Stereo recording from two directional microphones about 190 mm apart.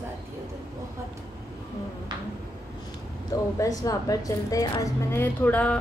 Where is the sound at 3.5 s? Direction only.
15° left (ahead or behind).